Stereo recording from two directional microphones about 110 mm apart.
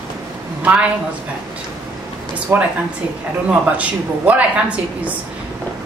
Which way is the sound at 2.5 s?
25° right (ahead or behind).